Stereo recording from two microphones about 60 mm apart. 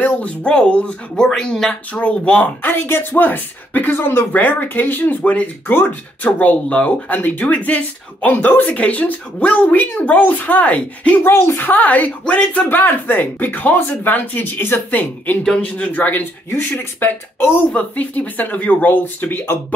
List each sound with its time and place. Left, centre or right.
0.0 s speech: left
2.6 s speech: left
11.2 s speech: left
15.4 s speech: centre
15.8 s speech: left
17.7 s speech: left